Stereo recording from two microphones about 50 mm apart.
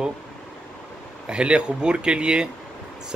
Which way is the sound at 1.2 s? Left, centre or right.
Centre.